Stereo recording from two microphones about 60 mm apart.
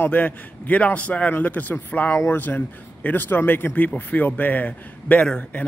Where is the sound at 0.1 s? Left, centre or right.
Left.